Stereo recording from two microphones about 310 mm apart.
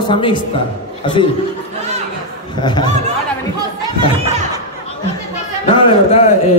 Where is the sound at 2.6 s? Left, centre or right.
Centre.